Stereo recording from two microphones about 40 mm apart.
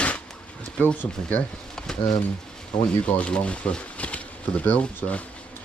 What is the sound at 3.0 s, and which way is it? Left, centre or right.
Speech, left.